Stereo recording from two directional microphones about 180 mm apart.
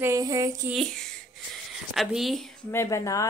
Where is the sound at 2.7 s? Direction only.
15° left (ahead or behind).